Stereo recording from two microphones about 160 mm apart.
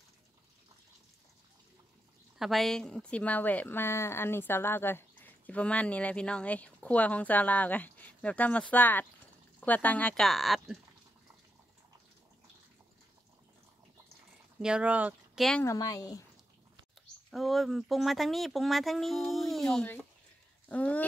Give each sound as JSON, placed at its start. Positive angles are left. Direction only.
{"t": 2.3, "sound": "a woman's voice", "side_deg": 0}
{"t": 14.6, "sound": "speech", "side_deg": -5}
{"t": 15.6, "sound": "speech", "side_deg": 20}
{"t": 17.3, "sound": "speech", "side_deg": 0}